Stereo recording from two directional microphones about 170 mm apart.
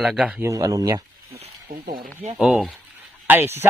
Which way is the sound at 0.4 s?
20° right (ahead or behind).